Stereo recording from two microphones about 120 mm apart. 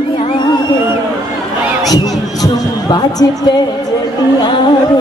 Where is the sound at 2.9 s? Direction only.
35° left (ahead or behind).